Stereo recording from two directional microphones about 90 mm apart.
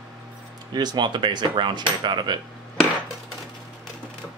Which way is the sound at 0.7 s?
55° right (ahead or behind).